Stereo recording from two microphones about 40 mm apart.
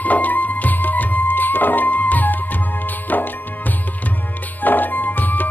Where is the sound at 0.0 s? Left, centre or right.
Left.